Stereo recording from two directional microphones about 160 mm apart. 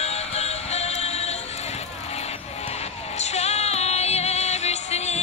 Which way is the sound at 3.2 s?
45° left (ahead or behind).